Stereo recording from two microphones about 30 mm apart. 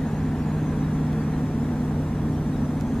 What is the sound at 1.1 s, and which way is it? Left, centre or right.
Vehicle, left.